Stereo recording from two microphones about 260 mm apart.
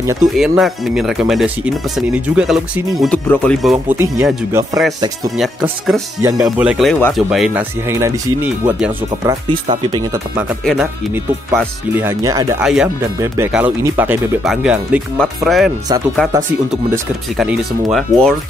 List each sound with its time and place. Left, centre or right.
0.2 s speech: centre
6.2 s speech: centre
9.2 s speech: centre
10.6 s speech: centre